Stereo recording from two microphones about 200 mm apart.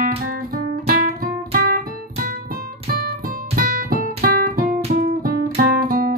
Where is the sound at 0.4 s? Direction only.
45° right (ahead or behind).